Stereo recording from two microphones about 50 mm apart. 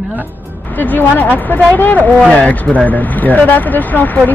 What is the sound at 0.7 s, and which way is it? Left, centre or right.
Speech, left.